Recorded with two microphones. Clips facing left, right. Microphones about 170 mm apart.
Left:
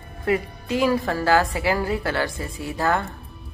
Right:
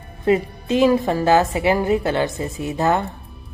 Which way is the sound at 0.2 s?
25° right (ahead or behind).